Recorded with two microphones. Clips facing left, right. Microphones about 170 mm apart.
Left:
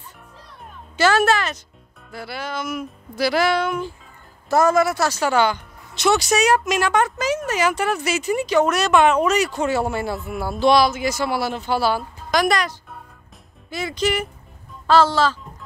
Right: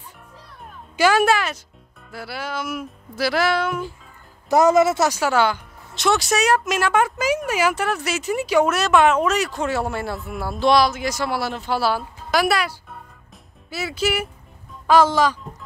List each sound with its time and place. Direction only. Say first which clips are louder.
0.9 s music: even; 10° right (ahead or behind)
2.0 s speech: even; 5° right (ahead or behind)
4.5 s speech: right 2 dB; 20° right (ahead or behind)
5.2 s speech: even; 5° right (ahead or behind)